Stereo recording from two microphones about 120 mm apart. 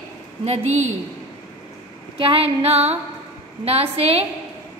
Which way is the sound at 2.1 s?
50° right (ahead or behind).